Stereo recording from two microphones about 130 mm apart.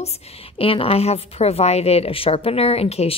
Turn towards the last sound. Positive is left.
turn(degrees=50)  # may be behind; listen again after turning